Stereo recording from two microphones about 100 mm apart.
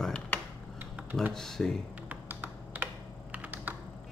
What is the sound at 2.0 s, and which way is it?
Computer keyboard, 15° right (ahead or behind).